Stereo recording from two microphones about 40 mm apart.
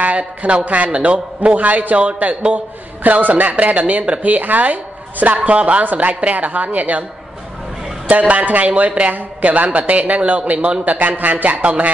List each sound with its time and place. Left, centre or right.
0.0 s a man's voice: right
8.1 s a man's voice: right
11.6 s a man's voice: right